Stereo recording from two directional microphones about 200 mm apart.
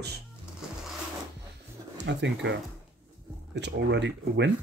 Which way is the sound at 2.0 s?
60° right (ahead or behind).